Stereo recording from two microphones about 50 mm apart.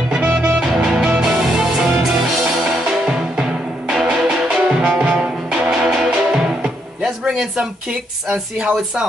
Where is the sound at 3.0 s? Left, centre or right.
Centre.